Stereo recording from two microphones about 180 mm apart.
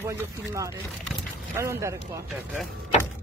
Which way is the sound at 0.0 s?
15° right (ahead or behind).